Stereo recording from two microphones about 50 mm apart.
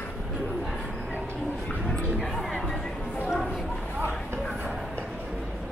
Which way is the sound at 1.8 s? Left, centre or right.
Centre.